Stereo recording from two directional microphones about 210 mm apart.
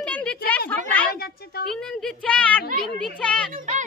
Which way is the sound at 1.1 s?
45° left (ahead or behind).